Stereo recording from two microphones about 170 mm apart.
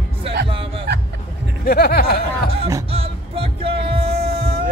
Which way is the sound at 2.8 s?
35° right (ahead or behind).